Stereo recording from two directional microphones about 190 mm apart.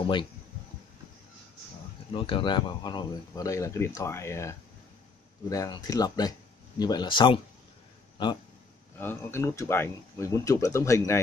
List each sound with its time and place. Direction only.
0.0 s speech: 25° left (ahead or behind)
2.1 s speech: 30° left (ahead or behind)
8.9 s speech: 10° left (ahead or behind)